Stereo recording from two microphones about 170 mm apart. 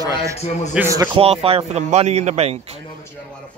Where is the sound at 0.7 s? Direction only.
15° right (ahead or behind).